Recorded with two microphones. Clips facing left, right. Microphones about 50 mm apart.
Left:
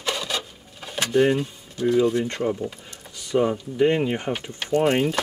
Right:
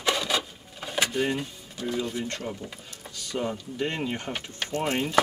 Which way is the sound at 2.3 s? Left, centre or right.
Left.